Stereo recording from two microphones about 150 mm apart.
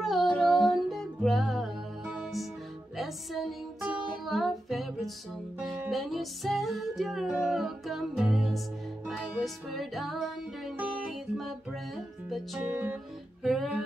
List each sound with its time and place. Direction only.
0.0 s music: centre (ahead or behind)
13.4 s music: centre (ahead or behind)